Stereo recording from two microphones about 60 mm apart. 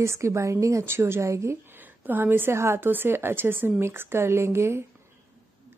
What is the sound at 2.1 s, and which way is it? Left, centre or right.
A woman's voice, right.